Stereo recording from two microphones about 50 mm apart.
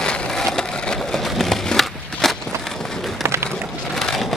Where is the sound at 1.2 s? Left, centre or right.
Centre.